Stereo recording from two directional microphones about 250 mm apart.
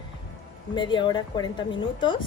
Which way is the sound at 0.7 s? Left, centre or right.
Centre.